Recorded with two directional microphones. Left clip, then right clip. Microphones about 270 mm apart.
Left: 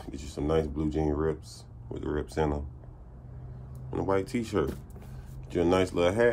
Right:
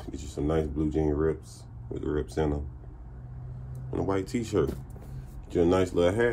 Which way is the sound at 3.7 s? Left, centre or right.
Centre.